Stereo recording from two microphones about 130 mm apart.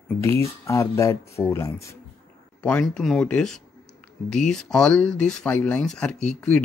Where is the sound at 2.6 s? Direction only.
10° left (ahead or behind).